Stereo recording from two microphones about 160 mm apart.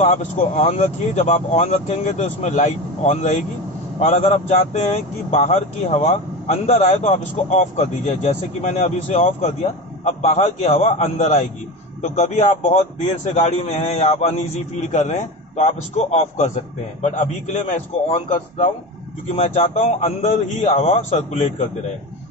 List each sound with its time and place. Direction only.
0.0 s a man's voice: 45° left (ahead or behind)